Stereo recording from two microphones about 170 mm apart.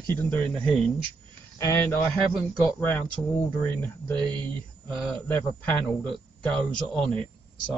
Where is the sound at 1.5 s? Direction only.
15° left (ahead or behind).